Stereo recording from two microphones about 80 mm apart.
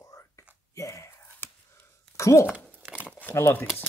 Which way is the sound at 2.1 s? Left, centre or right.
Left.